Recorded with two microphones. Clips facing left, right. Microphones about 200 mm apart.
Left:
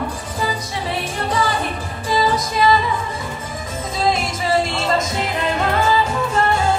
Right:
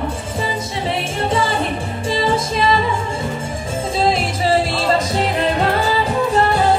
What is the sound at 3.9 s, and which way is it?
Music, 30° right (ahead or behind).